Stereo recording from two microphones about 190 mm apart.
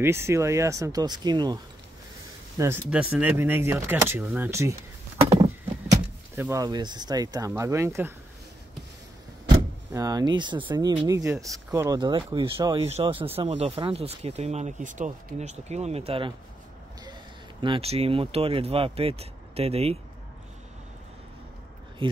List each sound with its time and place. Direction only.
0.0 s speech: 15° right (ahead or behind)
5.2 s a sound: 30° right (ahead or behind)
5.9 s speech: 15° right (ahead or behind)
9.9 s speech: 20° right (ahead or behind)
17.6 s speech: 30° right (ahead or behind)
22.0 s speech: 25° right (ahead or behind)